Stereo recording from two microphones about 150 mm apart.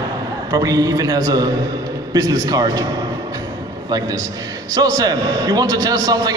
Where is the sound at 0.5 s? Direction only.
25° right (ahead or behind).